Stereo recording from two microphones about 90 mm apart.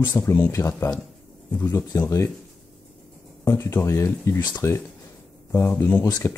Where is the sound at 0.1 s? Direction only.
30° left (ahead or behind).